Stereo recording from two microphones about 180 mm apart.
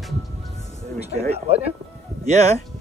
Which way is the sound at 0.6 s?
40° left (ahead or behind).